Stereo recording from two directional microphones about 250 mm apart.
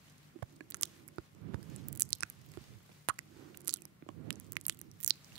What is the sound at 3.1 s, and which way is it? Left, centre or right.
Biting, right.